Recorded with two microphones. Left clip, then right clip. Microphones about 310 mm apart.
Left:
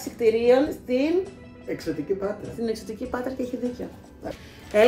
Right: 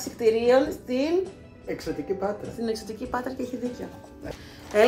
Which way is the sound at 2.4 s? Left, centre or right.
Centre.